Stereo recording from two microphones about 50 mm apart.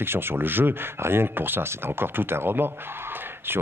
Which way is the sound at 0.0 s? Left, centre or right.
Right.